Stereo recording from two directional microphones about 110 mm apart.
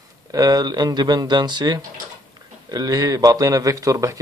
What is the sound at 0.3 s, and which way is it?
A man's voice, 35° right (ahead or behind).